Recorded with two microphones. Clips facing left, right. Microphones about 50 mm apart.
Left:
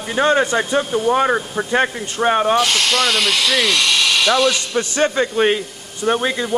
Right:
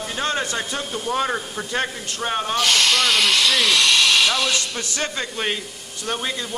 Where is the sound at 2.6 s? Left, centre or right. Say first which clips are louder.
Left 2 dB; centre.